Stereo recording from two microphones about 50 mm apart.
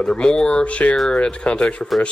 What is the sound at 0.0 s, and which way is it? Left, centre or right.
Speech, centre.